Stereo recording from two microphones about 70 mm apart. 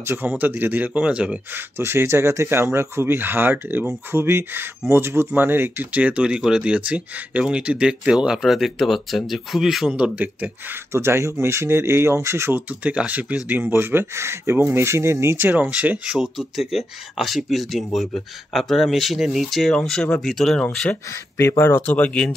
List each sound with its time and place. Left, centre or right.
0.0 s speech: right; by 1.4 s centre
1.5 s speech: right; by 9.8 s centre
9.8 s speech: centre
10.9 s speech: right
12.8 s speech: centre; by 15.3 s right
15.7 s speech: right
16.1 s speech: centre
19.7 s speech: centre
21.4 s speech: left
21.8 s speech: centre